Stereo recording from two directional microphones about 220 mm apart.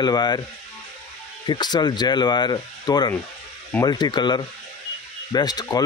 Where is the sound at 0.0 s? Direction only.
20° left (ahead or behind).